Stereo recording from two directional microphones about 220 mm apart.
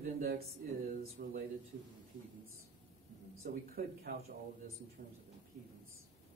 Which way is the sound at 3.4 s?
45° right (ahead or behind).